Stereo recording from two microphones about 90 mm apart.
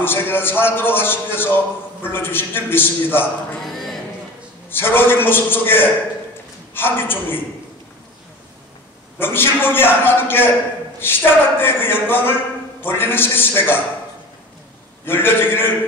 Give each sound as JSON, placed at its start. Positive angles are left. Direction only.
{"t": 0.0, "sound": "a man's voice", "side_deg": 25}
{"t": 3.6, "sound": "a sound", "side_deg": 5}
{"t": 4.6, "sound": "a man's voice", "side_deg": 25}
{"t": 9.2, "sound": "a man's voice", "side_deg": 25}
{"t": 15.0, "sound": "a man's voice", "side_deg": 25}